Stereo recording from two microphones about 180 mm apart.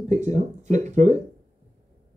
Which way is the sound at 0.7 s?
45° right (ahead or behind).